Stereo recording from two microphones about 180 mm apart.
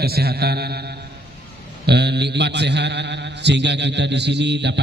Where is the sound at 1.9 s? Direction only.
70° right (ahead or behind).